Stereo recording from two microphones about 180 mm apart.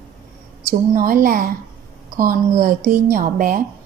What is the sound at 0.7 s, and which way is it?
Speech, 50° right (ahead or behind).